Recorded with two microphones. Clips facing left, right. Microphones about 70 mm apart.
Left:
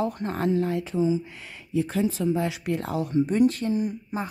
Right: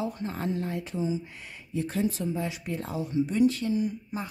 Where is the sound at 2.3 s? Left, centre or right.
Left.